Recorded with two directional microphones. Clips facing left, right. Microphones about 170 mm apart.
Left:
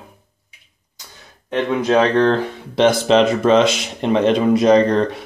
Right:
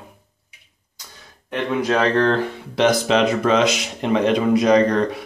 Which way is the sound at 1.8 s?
20° left (ahead or behind).